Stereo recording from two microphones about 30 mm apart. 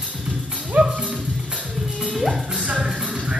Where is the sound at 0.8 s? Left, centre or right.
Right.